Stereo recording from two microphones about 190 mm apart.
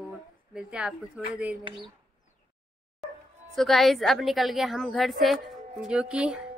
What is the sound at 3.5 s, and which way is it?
A woman's voice, centre (ahead or behind).